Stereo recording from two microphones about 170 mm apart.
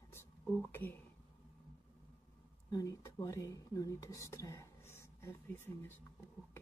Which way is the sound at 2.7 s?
20° left (ahead or behind).